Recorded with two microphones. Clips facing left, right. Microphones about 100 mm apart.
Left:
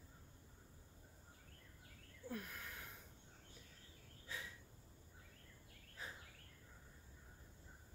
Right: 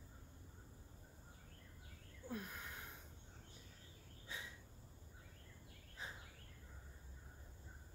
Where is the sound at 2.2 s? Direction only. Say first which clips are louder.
Right 1 dB; 20° right (ahead or behind).